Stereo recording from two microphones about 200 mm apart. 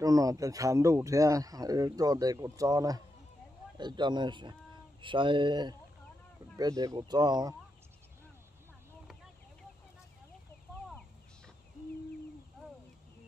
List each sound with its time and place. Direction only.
0.0 s a man's voice: 15° right (ahead or behind)